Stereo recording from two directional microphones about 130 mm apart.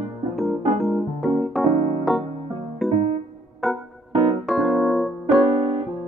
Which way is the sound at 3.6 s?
Centre (ahead or behind).